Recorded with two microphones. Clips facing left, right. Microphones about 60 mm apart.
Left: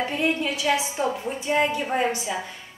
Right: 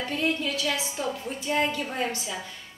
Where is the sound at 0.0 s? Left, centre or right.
Left.